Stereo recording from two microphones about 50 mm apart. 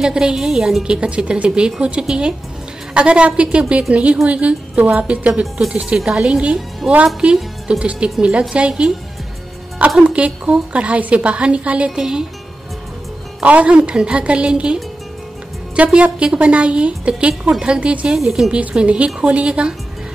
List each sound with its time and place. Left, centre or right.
0.0 s a woman's voice: centre
6.8 s a woman's voice: centre
7.8 s a woman's voice: right
10.1 s a woman's voice: right
12.0 s a woman's voice: centre
13.4 s a woman's voice: right
18.6 s a woman's voice: right